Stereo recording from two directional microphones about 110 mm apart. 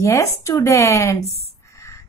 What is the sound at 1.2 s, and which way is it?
Speech, 70° left (ahead or behind).